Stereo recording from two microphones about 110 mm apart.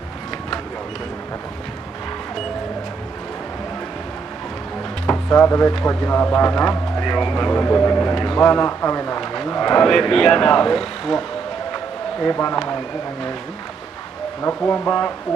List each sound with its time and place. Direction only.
5.0 s a sound: 20° left (ahead or behind)
5.9 s speech: 20° left (ahead or behind)
8.1 s a man's voice: 10° left (ahead or behind)
12.2 s speech: 20° left (ahead or behind)
14.6 s speech: 15° left (ahead or behind)